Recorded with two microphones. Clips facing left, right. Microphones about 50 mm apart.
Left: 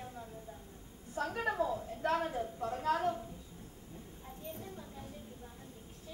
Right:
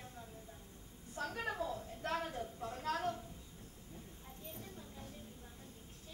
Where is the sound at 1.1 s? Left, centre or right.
Centre.